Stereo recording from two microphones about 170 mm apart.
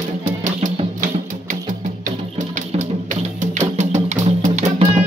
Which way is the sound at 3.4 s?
45° right (ahead or behind).